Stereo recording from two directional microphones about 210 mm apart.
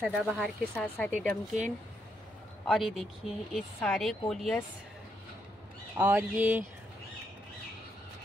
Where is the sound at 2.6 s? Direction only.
Centre (ahead or behind).